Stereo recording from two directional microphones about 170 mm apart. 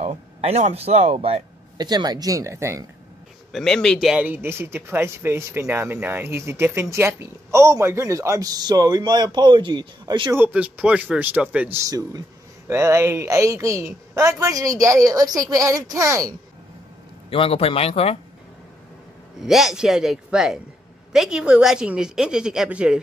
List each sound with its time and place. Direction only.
0.0 s speech: 35° right (ahead or behind)
1.8 s a woman's voice: 25° right (ahead or behind)
3.5 s a man's voice: 5° left (ahead or behind); by 10.3 s 25° right (ahead or behind)
10.3 s a man's voice: 10° right (ahead or behind)
17.3 s speech: 35° left (ahead or behind)
19.4 s a woman's voice: centre (ahead or behind)